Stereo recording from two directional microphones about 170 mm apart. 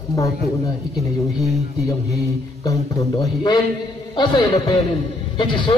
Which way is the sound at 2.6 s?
20° left (ahead or behind).